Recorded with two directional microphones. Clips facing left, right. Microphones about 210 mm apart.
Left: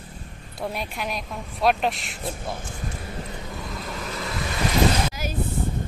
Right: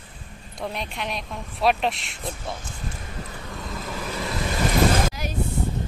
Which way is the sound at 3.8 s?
Centre (ahead or behind).